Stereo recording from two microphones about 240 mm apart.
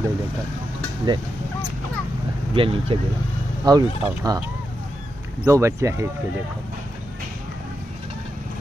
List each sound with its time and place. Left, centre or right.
1.1 s speech: centre
2.5 s speech: right
5.4 s speech: centre